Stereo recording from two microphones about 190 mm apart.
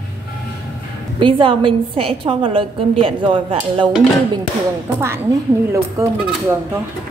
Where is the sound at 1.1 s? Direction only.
25° right (ahead or behind).